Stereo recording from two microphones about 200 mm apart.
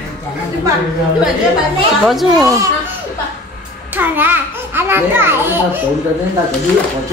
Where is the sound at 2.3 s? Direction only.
15° right (ahead or behind).